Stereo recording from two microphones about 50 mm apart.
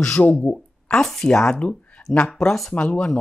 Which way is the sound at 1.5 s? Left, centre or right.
Left.